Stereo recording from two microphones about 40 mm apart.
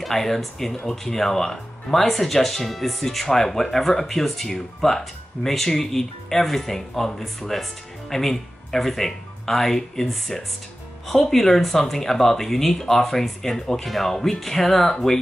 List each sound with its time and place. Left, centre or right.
0.0 s speech: centre